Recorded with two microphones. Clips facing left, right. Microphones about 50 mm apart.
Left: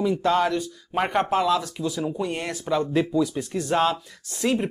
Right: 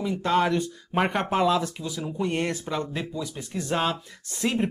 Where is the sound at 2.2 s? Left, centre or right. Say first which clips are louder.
Right 2 dB; right.